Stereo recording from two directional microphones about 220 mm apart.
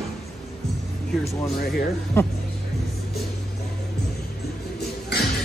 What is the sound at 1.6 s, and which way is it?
Speech, 45° left (ahead or behind).